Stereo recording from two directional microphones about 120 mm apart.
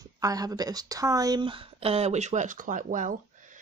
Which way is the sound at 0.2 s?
30° right (ahead or behind).